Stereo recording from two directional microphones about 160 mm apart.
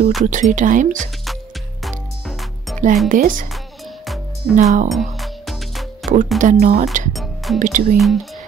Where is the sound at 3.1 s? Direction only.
60° right (ahead or behind).